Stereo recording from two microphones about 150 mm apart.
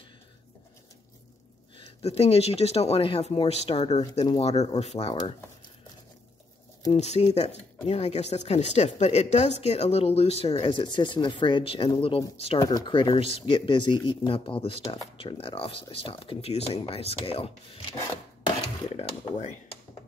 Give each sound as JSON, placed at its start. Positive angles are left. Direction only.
{"t": 1.8, "sound": "speech", "side_deg": 40}
{"t": 4.2, "sound": "speech", "side_deg": 30}
{"t": 4.5, "sound": "speech", "side_deg": 45}
{"t": 6.9, "sound": "speech", "side_deg": 45}
{"t": 12.5, "sound": "speech", "side_deg": 25}
{"t": 18.9, "sound": "speech", "side_deg": 40}